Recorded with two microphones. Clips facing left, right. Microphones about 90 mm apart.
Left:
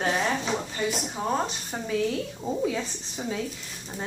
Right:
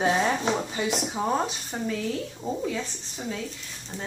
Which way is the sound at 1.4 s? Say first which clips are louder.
Right 1 dB; centre (ahead or behind).